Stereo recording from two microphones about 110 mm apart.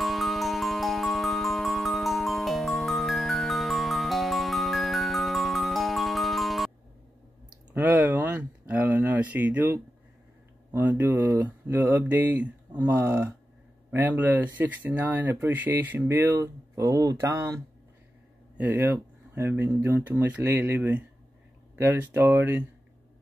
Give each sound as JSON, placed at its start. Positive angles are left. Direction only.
{"t": 0.0, "sound": "music", "side_deg": 0}
{"t": 7.7, "sound": "a sound", "side_deg": -15}
{"t": 10.7, "sound": "speech", "side_deg": -15}